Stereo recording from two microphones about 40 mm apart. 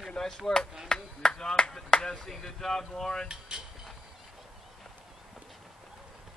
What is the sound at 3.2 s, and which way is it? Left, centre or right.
Cutlery, centre.